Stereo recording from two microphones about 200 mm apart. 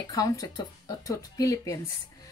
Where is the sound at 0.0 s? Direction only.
20° left (ahead or behind).